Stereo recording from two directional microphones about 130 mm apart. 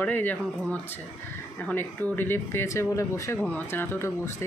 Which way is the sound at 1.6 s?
15° left (ahead or behind).